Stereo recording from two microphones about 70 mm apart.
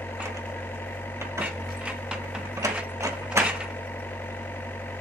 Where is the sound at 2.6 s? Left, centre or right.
Right.